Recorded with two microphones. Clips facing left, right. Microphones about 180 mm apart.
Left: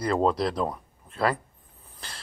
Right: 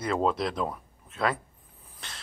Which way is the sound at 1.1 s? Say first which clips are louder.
Left 3 dB; centre (ahead or behind).